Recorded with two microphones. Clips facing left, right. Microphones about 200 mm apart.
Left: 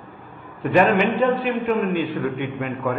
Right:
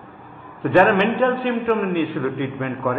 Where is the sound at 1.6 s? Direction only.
15° left (ahead or behind).